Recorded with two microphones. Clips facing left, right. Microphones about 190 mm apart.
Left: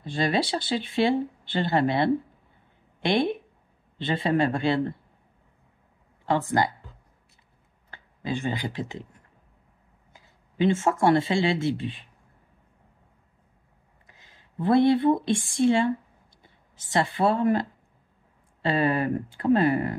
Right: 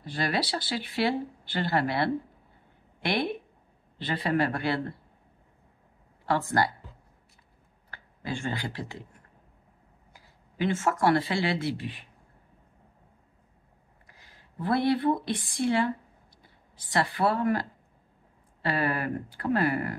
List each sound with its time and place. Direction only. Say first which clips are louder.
0.0 s speech: left 4 dB; 25° left (ahead or behind)
6.2 s speech: left 2 dB; 20° left (ahead or behind)
7.9 s speech: left 4 dB; 20° left (ahead or behind)
10.1 s speech: left 6 dB; 25° left (ahead or behind)
14.0 s speech: even; 20° left (ahead or behind)